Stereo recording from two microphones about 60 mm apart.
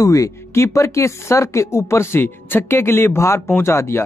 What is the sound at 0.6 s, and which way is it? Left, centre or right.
Speech, left.